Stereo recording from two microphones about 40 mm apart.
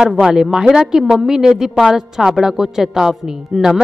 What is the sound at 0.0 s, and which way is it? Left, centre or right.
A woman's voice, centre.